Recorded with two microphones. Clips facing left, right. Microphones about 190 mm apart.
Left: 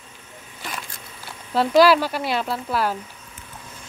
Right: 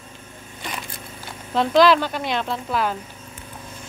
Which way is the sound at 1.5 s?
5° left (ahead or behind).